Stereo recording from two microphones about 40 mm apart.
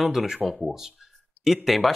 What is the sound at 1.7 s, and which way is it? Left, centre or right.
Speech, centre.